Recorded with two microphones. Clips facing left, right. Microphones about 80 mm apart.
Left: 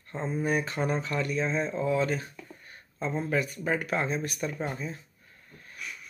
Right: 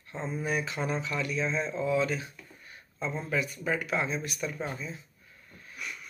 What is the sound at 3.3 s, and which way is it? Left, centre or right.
Speech, left.